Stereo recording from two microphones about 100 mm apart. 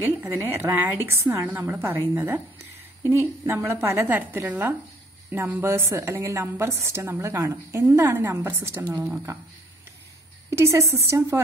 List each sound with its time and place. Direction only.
0.2 s a woman's voice: 25° right (ahead or behind)
10.5 s a woman's voice: 30° right (ahead or behind)